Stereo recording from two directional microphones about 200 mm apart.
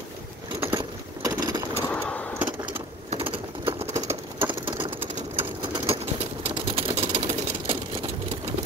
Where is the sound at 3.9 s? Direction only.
15° right (ahead or behind).